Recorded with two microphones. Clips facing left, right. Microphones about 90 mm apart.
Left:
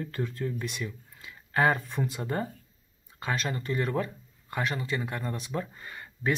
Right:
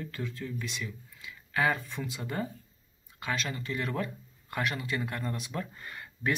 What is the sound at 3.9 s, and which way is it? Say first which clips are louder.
Speech: left 3 dB; 25° left (ahead or behind).